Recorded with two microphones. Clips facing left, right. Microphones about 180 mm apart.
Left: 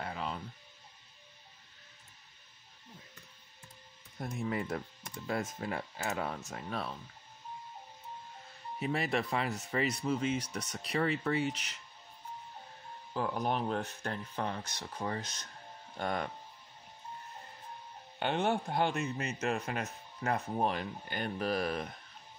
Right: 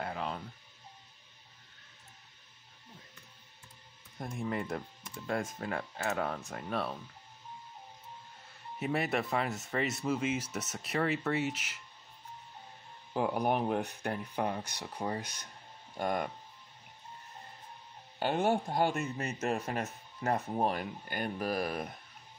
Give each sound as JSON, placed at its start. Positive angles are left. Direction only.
{"t": 0.0, "sound": "music", "side_deg": 0}
{"t": 4.2, "sound": "speech", "side_deg": 0}
{"t": 8.7, "sound": "speech", "side_deg": 0}
{"t": 13.1, "sound": "speech", "side_deg": -15}
{"t": 18.2, "sound": "speech", "side_deg": -5}
{"t": 19.1, "sound": "speech", "side_deg": -45}
{"t": 20.7, "sound": "speech", "side_deg": -5}